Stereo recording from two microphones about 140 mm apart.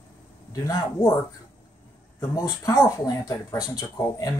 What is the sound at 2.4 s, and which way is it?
Speech, 25° left (ahead or behind).